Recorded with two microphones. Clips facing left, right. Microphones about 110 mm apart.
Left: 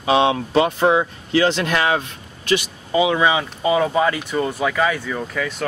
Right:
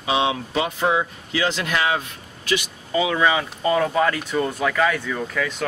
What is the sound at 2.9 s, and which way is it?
Speech, 20° left (ahead or behind).